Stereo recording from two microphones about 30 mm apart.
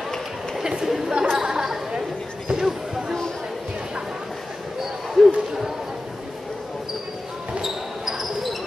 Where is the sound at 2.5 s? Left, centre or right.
Centre.